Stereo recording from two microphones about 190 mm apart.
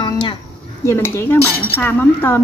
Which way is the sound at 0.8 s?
15° left (ahead or behind).